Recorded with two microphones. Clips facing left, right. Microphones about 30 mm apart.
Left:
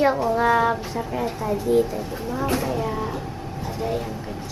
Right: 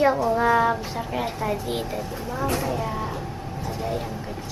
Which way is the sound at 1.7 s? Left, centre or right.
Right.